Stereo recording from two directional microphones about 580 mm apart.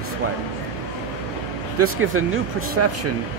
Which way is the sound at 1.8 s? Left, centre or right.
Right.